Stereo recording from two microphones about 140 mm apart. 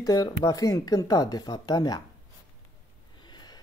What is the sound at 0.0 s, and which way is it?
Speech, 25° left (ahead or behind).